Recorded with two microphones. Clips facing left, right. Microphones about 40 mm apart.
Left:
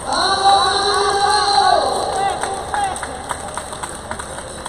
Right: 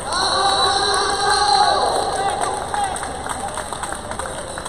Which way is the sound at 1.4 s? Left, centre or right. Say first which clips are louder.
Even; centre.